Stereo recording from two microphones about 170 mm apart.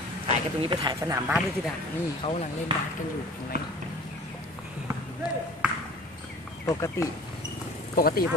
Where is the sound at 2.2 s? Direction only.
40° left (ahead or behind).